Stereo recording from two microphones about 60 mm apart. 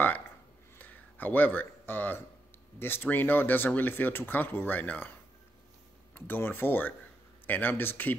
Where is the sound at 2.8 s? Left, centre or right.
Left.